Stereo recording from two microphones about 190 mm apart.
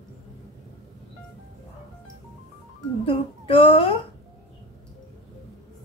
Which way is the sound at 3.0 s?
30° left (ahead or behind).